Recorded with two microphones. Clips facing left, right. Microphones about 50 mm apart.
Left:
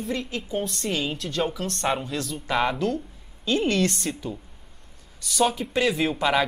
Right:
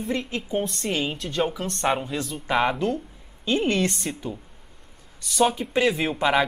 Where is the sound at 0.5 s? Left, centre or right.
Centre.